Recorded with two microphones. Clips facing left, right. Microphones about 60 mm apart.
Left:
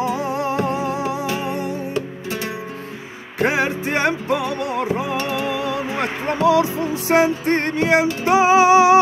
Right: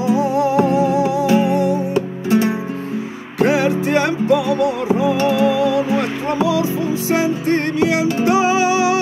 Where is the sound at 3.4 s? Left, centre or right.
Left.